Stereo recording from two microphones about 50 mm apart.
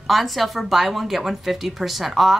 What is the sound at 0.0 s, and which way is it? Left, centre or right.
A woman's voice, centre.